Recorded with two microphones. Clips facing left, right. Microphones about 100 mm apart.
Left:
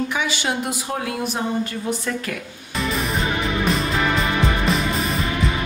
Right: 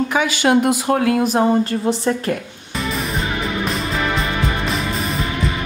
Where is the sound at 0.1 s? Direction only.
50° right (ahead or behind).